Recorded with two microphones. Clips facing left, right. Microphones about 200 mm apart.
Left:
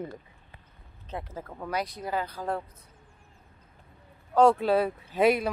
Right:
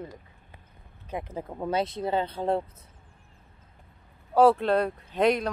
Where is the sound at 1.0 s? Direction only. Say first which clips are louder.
Right 3 dB; 15° right (ahead or behind).